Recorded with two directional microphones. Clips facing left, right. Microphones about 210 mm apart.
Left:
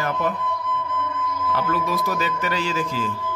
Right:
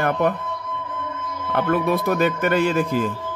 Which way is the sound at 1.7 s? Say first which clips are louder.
Right 5 dB; 60° right (ahead or behind).